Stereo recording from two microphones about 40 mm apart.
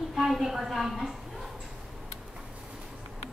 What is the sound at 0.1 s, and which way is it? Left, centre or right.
A woman's voice, centre.